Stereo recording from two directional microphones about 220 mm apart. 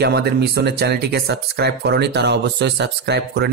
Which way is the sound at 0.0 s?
50° right (ahead or behind).